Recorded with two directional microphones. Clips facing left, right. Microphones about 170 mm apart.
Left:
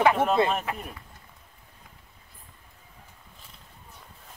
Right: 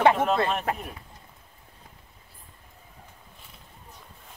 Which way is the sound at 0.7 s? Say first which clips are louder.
Right 4 dB; 45° right (ahead or behind).